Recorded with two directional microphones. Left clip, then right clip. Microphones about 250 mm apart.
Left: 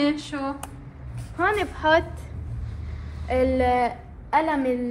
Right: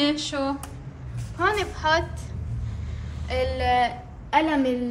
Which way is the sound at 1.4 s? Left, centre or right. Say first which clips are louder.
Left 1 dB; left.